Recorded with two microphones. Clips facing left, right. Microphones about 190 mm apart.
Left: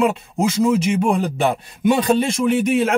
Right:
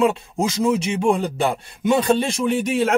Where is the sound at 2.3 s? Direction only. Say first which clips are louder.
Left 3 dB; centre (ahead or behind).